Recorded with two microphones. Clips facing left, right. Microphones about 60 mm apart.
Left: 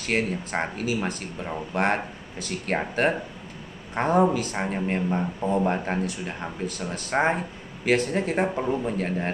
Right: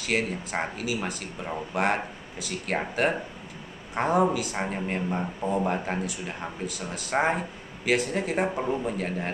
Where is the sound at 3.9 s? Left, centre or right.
Centre.